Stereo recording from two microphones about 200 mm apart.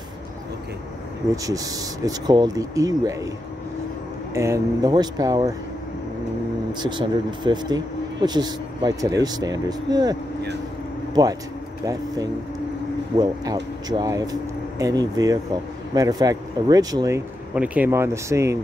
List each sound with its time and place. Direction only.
1.3 s speech: 15° right (ahead or behind)
4.3 s speech: 15° right (ahead or behind)
6.7 s speech: 20° right (ahead or behind)
11.8 s speech: 15° right (ahead or behind)